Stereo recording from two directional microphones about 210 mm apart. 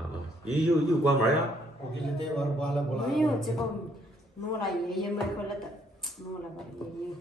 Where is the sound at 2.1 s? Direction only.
5° left (ahead or behind).